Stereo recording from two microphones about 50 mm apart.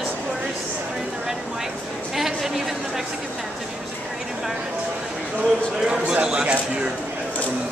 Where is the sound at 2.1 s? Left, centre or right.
Centre.